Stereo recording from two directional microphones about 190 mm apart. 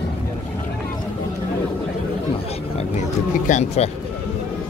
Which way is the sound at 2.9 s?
40° left (ahead or behind).